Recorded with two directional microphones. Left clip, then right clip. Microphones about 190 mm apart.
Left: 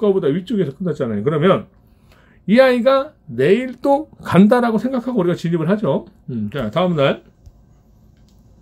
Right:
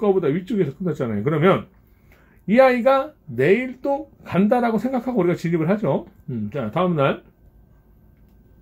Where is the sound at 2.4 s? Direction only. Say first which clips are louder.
Left 2 dB; 5° left (ahead or behind).